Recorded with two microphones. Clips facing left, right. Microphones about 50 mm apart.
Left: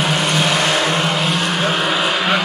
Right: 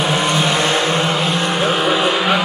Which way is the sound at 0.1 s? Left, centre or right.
Centre.